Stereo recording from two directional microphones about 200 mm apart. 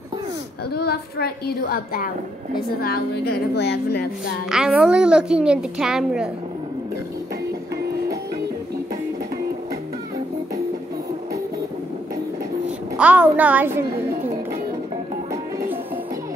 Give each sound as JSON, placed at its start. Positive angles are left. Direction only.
{"t": 0.7, "sound": "a woman's voice", "side_deg": 50}
{"t": 4.5, "sound": "a woman's voice", "side_deg": -5}
{"t": 12.9, "sound": "a child's voice", "side_deg": -10}